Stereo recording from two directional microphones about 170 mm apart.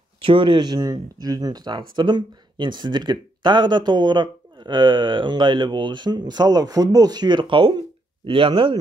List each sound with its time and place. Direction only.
0.2 s speech: 30° right (ahead or behind)